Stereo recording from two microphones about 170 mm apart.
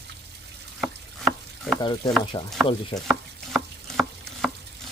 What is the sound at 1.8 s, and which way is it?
Stir, 25° left (ahead or behind).